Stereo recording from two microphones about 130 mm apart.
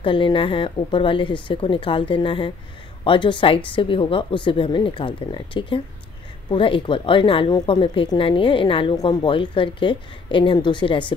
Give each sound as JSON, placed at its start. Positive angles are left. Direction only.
{"t": 0.0, "sound": "a woman's voice", "side_deg": 40}